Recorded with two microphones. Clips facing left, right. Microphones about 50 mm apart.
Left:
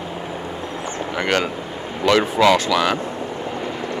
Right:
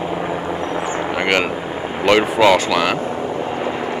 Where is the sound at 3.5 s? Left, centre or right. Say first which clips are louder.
Right 4 dB; centre.